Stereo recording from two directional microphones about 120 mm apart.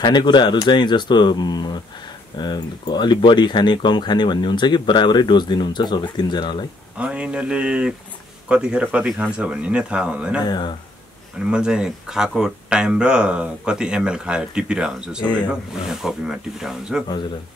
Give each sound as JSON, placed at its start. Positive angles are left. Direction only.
{"t": 0.0, "sound": "speech", "side_deg": 40}
{"t": 7.0, "sound": "speech", "side_deg": -10}
{"t": 10.4, "sound": "speech", "side_deg": 35}
{"t": 11.5, "sound": "speech", "side_deg": -5}